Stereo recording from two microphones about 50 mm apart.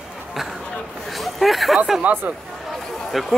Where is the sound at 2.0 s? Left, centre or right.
Right.